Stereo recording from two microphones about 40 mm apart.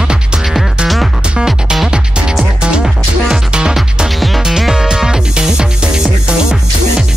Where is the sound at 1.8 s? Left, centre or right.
Right.